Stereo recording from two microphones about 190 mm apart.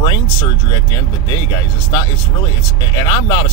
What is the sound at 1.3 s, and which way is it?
Speech, 15° left (ahead or behind).